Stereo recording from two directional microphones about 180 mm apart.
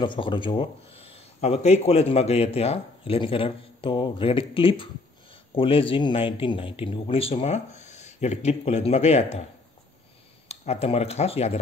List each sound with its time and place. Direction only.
0.0 s a man's voice: 25° left (ahead or behind)
10.5 s a man's voice: 35° left (ahead or behind)